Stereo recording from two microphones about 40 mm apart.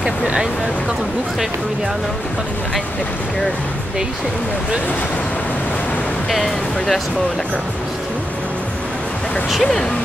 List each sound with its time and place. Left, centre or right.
0.0 s speech: centre
6.3 s speech: centre
9.5 s speech: centre